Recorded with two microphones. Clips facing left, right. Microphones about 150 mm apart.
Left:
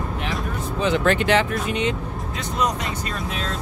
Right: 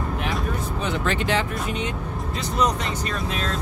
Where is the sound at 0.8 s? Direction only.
80° left.